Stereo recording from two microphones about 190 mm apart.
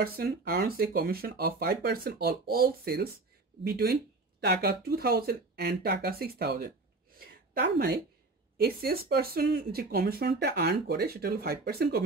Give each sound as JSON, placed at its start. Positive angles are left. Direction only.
{"t": 0.0, "sound": "speech", "side_deg": -55}